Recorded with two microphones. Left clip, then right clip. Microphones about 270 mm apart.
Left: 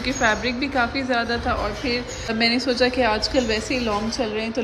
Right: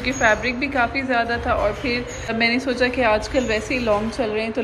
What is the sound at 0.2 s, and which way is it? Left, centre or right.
A woman's voice, centre.